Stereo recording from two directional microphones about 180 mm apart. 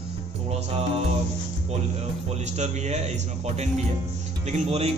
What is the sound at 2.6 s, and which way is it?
Speech, 40° right (ahead or behind).